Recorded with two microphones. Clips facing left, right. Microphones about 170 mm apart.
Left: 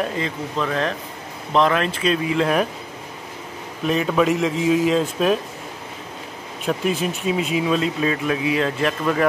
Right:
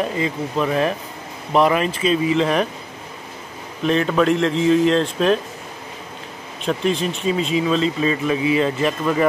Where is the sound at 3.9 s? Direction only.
5° left (ahead or behind).